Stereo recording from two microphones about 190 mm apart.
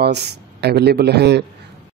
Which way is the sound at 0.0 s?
60° right (ahead or behind).